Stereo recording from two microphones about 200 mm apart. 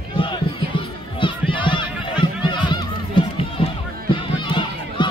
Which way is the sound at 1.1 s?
25° left (ahead or behind).